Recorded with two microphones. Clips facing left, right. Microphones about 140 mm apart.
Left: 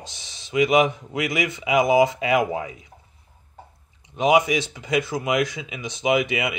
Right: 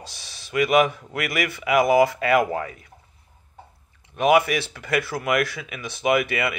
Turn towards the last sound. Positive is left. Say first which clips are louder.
# even
turn(degrees=15)  # may be behind; listen again after turning